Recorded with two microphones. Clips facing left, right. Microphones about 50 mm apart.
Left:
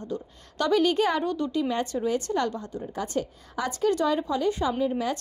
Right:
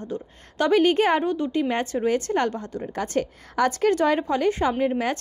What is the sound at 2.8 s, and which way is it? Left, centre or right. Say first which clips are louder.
A woman's voice: right 4 dB; right.